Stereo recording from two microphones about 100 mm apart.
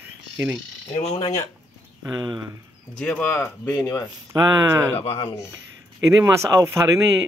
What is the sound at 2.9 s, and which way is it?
Speech, 10° left (ahead or behind).